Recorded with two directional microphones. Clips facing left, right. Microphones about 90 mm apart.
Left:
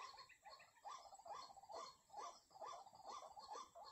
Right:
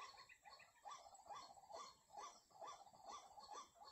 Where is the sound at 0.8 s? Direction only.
15° left (ahead or behind).